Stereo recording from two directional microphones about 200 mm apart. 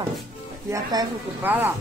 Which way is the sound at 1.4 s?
10° right (ahead or behind).